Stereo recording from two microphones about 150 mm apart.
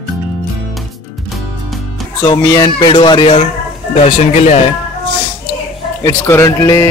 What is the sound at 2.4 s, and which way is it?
Speech, 25° left (ahead or behind).